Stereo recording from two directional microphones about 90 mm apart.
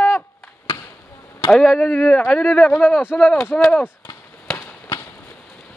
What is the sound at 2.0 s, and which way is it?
Speech, 15° left (ahead or behind).